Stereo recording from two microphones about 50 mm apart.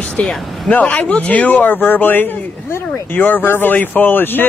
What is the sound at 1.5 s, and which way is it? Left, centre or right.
Speech, left.